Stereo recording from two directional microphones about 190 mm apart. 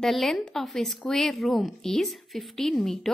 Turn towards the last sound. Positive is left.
turn(degrees=0)  # may be behind; listen again after turning